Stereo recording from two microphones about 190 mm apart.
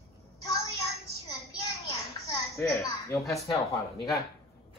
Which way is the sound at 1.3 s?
15° left (ahead or behind).